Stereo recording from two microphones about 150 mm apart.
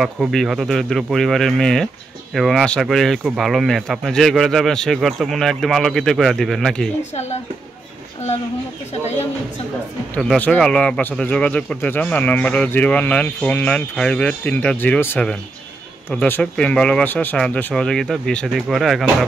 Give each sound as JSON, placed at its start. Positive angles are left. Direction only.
{"t": 0.0, "sound": "speech", "side_deg": 0}
{"t": 7.0, "sound": "speech", "side_deg": 50}
{"t": 10.1, "sound": "a man's voice", "side_deg": 5}